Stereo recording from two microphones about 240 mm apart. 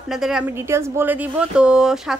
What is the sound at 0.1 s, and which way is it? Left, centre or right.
Speech, centre.